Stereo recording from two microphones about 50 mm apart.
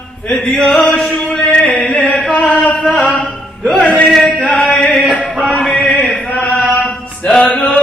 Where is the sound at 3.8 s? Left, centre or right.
Left.